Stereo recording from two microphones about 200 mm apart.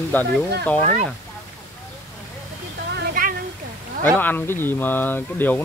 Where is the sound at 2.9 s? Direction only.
45° right (ahead or behind).